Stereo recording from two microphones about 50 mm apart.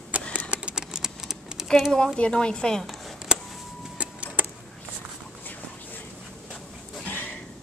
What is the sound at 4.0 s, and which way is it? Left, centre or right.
Vehicle, right.